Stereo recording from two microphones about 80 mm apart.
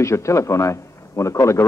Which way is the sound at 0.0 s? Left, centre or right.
Left.